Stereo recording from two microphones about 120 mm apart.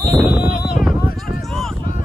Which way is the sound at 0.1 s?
Centre (ahead or behind).